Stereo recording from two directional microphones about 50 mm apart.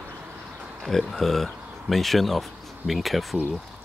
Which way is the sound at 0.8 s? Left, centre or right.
Centre.